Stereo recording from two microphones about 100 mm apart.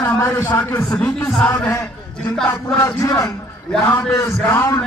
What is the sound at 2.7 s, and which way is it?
A man's voice, 30° left (ahead or behind).